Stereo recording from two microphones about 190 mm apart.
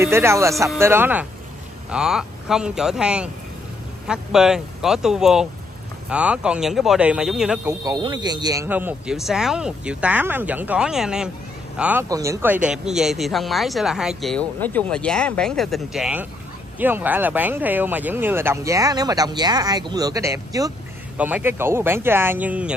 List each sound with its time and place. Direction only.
0.0 s speech: 15° right (ahead or behind)
7.6 s speech: 20° right (ahead or behind)
8.6 s speech: 10° right (ahead or behind)
12.6 s speech: 5° right (ahead or behind)